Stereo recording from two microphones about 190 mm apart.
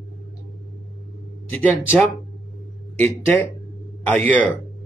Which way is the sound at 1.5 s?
10° left (ahead or behind).